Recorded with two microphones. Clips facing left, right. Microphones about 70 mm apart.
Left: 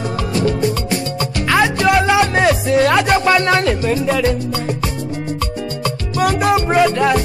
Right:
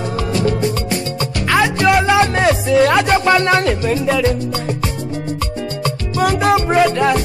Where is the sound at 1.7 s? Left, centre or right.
Right.